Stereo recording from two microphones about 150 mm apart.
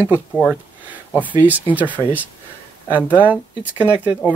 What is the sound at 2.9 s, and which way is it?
Speech, 10° right (ahead or behind).